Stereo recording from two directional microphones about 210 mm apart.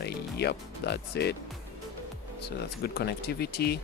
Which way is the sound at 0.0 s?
50° left (ahead or behind).